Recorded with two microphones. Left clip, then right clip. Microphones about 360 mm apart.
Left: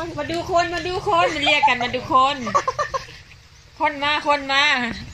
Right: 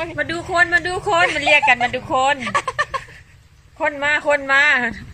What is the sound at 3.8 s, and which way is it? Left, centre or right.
A woman's voice, right.